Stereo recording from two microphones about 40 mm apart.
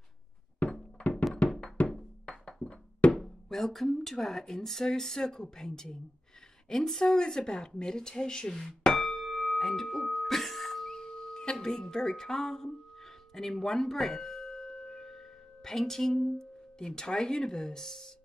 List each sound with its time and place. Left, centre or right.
0.6 s thunk: left
1.4 s music: left
1.9 s music: centre
3.2 s speech: centre
7.0 s a sound: centre
10.9 s music: centre
11.5 s speech: centre